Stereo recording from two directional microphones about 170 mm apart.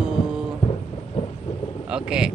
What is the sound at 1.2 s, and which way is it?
Vehicle, 35° left (ahead or behind).